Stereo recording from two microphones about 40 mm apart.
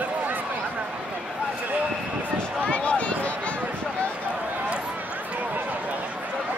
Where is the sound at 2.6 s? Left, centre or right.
Left.